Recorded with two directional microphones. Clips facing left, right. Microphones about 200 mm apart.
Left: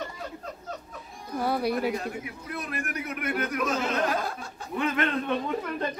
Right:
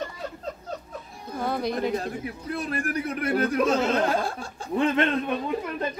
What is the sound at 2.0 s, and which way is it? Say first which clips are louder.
A man's voice: right 3 dB; 35° right (ahead or behind).